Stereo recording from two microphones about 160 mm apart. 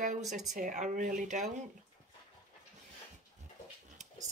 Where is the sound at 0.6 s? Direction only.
55° right (ahead or behind).